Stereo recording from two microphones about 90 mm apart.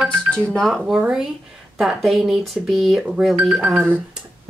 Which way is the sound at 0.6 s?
Centre (ahead or behind).